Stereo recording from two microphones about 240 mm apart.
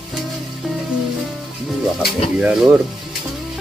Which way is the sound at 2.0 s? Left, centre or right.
Centre.